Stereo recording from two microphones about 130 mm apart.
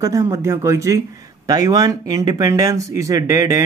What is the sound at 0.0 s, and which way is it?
A man's voice, 25° right (ahead or behind).